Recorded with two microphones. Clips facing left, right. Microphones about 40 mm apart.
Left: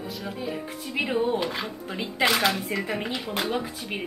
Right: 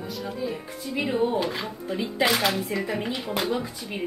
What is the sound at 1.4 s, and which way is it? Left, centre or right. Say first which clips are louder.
Speech: right 1 dB; centre.